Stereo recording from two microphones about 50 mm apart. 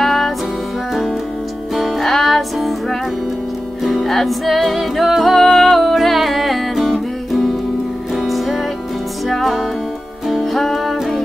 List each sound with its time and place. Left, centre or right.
0.0 s music: centre
1.8 s music: centre